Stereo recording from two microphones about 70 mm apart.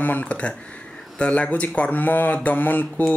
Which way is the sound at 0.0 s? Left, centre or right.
Left.